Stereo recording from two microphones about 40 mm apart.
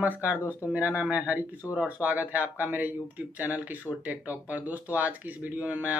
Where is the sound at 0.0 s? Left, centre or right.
Right.